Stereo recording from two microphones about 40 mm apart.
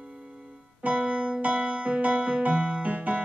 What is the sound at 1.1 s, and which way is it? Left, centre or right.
Keyboard, right.